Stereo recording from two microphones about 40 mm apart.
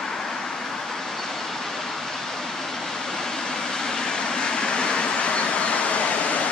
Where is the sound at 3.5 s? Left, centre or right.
Centre.